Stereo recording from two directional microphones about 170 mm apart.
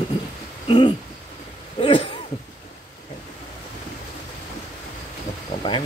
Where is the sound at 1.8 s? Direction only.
30° left (ahead or behind).